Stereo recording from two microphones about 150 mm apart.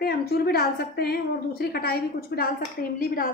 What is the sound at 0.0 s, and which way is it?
A woman's voice, 90° left.